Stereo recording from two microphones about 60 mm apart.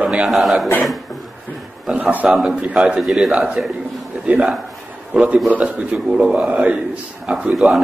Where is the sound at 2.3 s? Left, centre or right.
Centre.